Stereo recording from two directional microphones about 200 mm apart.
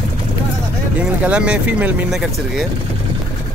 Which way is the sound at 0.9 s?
5° right (ahead or behind).